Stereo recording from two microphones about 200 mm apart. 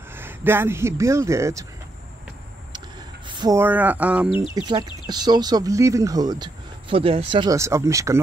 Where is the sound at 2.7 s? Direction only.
20° right (ahead or behind); by 4.2 s 5° right (ahead or behind).